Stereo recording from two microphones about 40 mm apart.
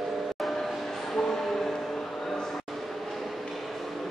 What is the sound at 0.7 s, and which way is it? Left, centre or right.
Music, centre.